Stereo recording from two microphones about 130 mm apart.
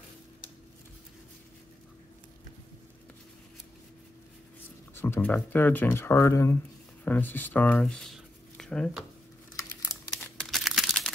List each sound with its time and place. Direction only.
4.9 s speech: 15° left (ahead or behind)
10.4 s crumpling: centre (ahead or behind)